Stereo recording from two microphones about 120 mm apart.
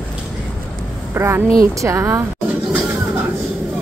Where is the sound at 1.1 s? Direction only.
20° right (ahead or behind).